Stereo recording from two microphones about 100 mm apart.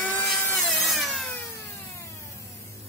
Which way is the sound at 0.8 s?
Centre (ahead or behind).